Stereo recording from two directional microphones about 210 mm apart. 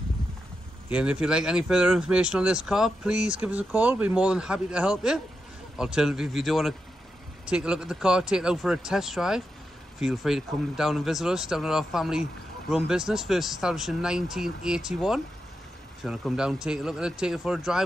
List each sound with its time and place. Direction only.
0.8 s speech: 5° right (ahead or behind)